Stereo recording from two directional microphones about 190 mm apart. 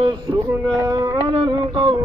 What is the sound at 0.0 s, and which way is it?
Speech, 25° right (ahead or behind).